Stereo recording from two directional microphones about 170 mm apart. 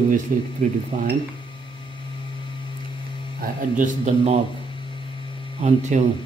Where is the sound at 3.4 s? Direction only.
45° right (ahead or behind).